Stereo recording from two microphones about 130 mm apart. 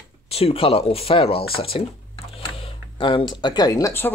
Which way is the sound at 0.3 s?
50° left (ahead or behind).